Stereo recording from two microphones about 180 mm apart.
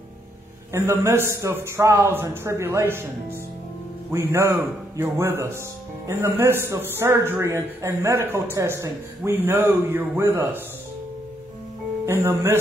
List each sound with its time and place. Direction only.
0.7 s a man's voice: 15° right (ahead or behind)
12.1 s a man's voice: 15° right (ahead or behind)